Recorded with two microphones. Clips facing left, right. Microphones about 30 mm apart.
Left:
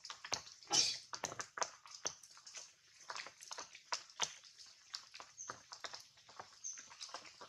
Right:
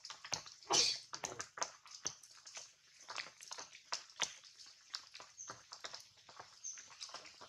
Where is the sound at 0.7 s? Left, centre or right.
Right.